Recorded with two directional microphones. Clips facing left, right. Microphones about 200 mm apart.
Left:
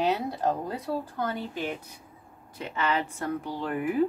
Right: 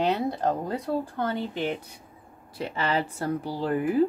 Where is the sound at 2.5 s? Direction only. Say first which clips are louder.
Right 2 dB; 35° right (ahead or behind).